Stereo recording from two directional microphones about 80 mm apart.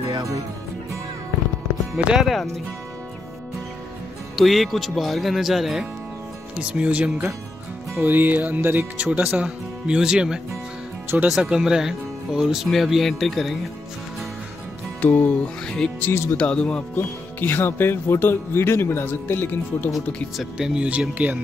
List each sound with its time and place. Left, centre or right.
2.0 s speech: centre
4.4 s speech: centre
6.5 s speech: centre
15.0 s speech: left
15.6 s speech: centre
16.0 s speech: left
16.3 s speech: centre
16.9 s speech: left
20.3 s speech: centre